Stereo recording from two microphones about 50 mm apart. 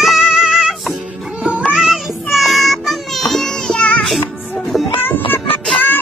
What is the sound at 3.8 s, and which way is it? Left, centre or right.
Music, left.